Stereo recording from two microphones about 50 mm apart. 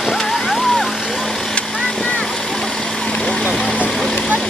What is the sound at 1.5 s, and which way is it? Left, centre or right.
Vehicle, left.